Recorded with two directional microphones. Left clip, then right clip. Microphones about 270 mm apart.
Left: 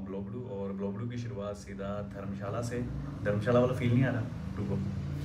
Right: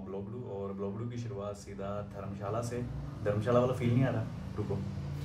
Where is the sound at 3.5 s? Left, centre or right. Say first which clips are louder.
Left 2 dB; right.